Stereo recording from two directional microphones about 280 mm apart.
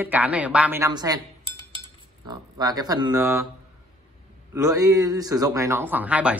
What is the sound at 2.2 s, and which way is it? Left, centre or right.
A man's voice, centre.